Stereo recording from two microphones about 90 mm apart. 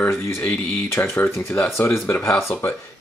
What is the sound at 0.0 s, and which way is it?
Speech, 25° left (ahead or behind).